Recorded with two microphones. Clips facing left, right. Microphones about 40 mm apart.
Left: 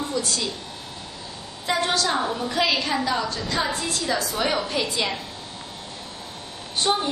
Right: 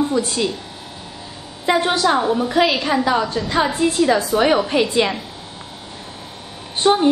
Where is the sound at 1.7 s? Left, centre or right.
Right.